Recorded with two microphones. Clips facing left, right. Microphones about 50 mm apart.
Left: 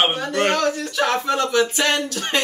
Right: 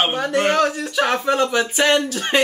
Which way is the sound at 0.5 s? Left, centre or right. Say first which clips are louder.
Right 2 dB; centre.